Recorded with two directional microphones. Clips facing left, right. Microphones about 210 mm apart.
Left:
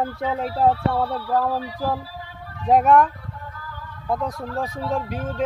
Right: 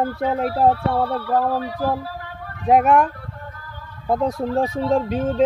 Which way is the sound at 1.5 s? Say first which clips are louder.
Right 3 dB; 60° right (ahead or behind).